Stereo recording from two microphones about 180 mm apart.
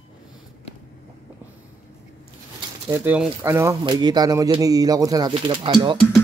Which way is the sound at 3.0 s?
10° right (ahead or behind).